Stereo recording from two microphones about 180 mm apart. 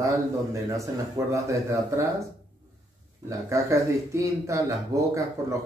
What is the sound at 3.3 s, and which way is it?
Speech, 15° right (ahead or behind).